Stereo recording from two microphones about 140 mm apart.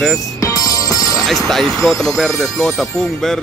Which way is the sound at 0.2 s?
25° left (ahead or behind).